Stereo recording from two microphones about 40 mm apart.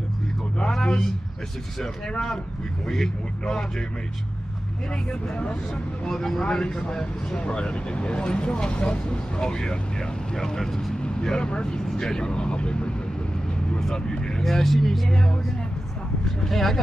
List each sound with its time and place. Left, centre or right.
0.6 s a sound: centre
2.9 s speech: centre
6.0 s speech: centre; by 12.9 s left
13.7 s speech: centre
14.1 s vehicle: centre
14.4 s speech: centre